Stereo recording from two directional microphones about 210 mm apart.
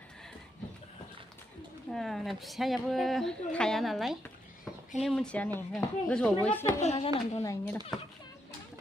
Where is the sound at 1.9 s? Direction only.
Centre (ahead or behind).